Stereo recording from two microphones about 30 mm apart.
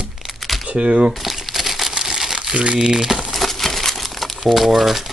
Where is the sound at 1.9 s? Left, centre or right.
Right.